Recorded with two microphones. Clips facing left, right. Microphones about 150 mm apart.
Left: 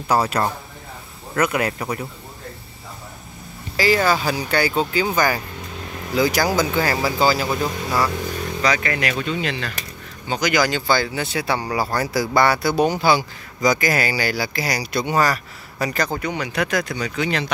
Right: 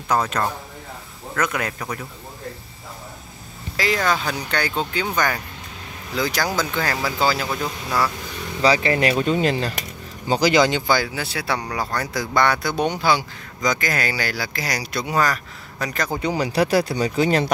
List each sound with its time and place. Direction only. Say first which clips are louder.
0.1 s speech: left 2 dB; 10° left (ahead or behind)
3.7 s speech: left 4 dB; centre (ahead or behind)
8.6 s speech: right 4 dB; 30° right (ahead or behind)
10.9 s speech: left 1 dB; 5° right (ahead or behind)
16.2 s speech: right 4 dB; 30° right (ahead or behind)